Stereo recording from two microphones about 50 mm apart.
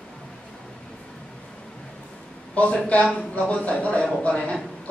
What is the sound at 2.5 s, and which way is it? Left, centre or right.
Speech, left.